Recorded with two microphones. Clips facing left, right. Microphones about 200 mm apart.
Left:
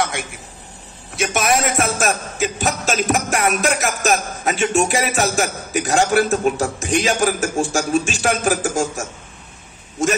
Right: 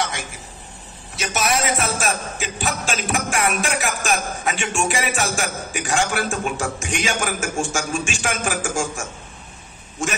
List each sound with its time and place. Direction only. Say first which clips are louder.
1.1 s music: left 4 dB; 50° left (ahead or behind)